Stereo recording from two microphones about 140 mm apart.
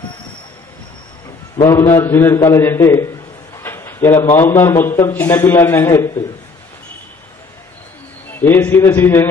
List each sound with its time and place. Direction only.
1.6 s a man's voice: 20° left (ahead or behind)
3.6 s a sound: 15° left (ahead or behind)
4.4 s a man's voice: 15° left (ahead or behind)
8.4 s a man's voice: 15° left (ahead or behind)